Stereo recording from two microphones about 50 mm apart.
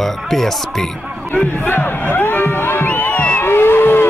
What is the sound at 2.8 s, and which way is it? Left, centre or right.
Music, left.